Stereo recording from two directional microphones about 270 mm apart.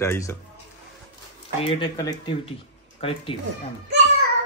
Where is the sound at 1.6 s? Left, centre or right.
Left.